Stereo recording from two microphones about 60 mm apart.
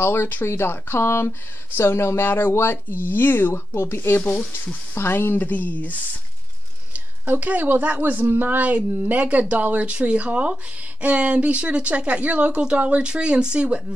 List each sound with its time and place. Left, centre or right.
0.0 s speech: left
7.2 s a woman's voice: right